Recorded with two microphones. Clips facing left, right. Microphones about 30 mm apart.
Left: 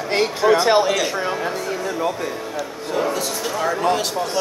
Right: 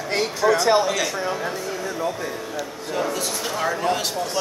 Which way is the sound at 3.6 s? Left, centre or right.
Centre.